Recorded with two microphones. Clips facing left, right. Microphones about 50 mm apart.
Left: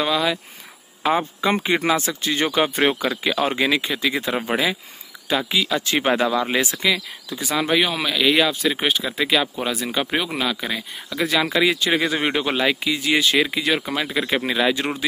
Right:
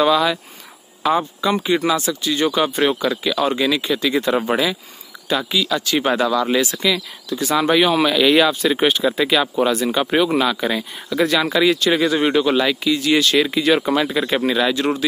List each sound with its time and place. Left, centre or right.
0.0 s speech: centre
1.0 s speech: left
3.8 s speech: centre
5.5 s speech: centre
7.4 s speech: centre
11.4 s speech: centre